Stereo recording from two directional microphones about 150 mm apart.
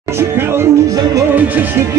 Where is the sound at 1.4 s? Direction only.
10° right (ahead or behind).